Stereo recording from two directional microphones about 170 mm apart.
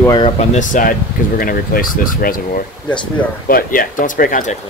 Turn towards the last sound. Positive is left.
turn(degrees=50)  # may be behind; listen again after turning